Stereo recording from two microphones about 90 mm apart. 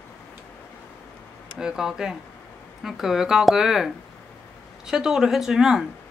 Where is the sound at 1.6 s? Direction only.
5° right (ahead or behind).